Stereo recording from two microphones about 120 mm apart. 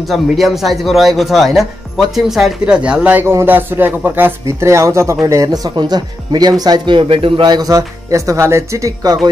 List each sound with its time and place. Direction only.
0.0 s speech: centre (ahead or behind); by 7.0 s 35° right (ahead or behind)
7.0 s speech: 50° right (ahead or behind); by 9.3 s 35° right (ahead or behind)